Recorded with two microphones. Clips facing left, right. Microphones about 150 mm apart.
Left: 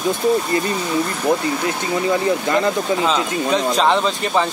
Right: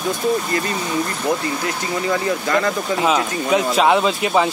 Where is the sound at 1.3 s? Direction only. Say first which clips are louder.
Left 4 dB; 20° left (ahead or behind).